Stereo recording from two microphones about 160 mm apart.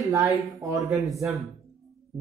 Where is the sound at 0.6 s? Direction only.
20° right (ahead or behind).